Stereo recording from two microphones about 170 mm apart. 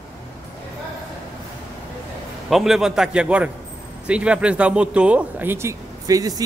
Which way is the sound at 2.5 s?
Centre (ahead or behind).